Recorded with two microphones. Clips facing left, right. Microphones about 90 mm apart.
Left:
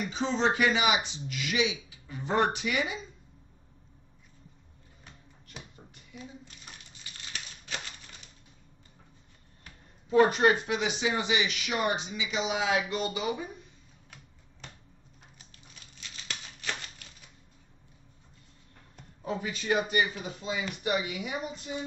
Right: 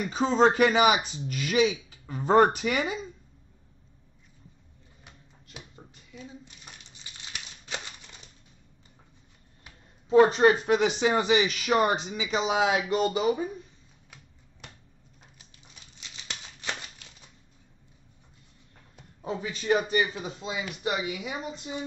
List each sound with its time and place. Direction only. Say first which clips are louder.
0.1 s speech: right 7 dB; 45° right (ahead or behind)
5.0 s drawer open or close: even; 10° right (ahead or behind)
10.1 s a man's voice: right 4 dB; 30° right (ahead or behind)
10.8 s speech: right 6 dB; 45° right (ahead or behind)
16.0 s a sound: even; 20° right (ahead or behind)
19.2 s a man's voice: right 3 dB; 35° right (ahead or behind)